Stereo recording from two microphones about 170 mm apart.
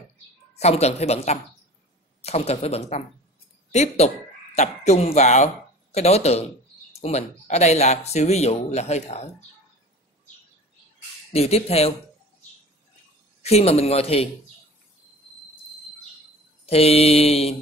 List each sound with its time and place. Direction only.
0.6 s speech: 40° left (ahead or behind)
11.3 s speech: 35° left (ahead or behind)
13.4 s speech: 40° left (ahead or behind)
16.6 s speech: 35° left (ahead or behind)